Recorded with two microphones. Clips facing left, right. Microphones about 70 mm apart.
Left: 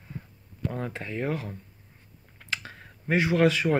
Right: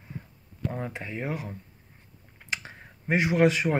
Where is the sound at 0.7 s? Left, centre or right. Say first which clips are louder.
Left 1 dB; centre.